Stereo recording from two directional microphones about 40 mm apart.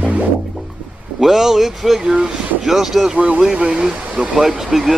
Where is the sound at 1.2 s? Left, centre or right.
Centre.